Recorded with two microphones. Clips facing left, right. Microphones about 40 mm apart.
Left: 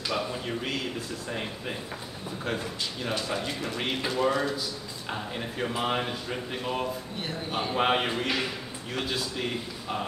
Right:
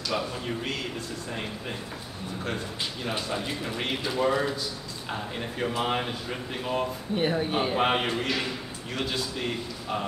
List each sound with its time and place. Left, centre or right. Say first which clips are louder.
0.1 s a man's voice: right 1 dB; centre
2.4 s speech: left 1 dB; centre
7.2 s a man's voice: right 9 dB; right
7.7 s speech: left 3 dB; centre